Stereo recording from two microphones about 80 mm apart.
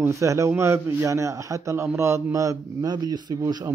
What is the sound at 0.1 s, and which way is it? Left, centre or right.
A man's voice, right.